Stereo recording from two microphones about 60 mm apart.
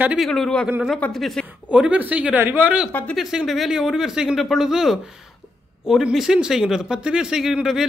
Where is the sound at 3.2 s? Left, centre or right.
Centre.